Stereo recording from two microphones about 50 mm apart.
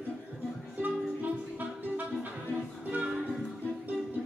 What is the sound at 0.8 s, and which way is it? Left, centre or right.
Music, right.